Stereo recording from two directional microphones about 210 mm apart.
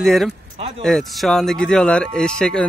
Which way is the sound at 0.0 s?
Centre (ahead or behind).